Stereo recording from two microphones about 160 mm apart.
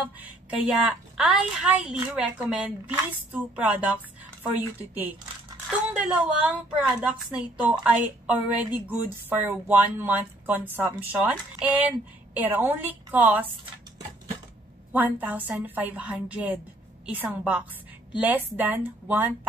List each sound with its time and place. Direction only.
0.2 s a woman's voice: 5° right (ahead or behind)
5.9 s a woman's voice: 5° right (ahead or behind)
14.9 s a woman's voice: 10° right (ahead or behind)